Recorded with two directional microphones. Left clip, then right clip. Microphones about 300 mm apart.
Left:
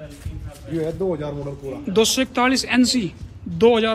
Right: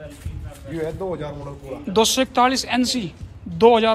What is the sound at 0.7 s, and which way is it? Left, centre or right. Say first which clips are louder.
Speech: left 2 dB; right.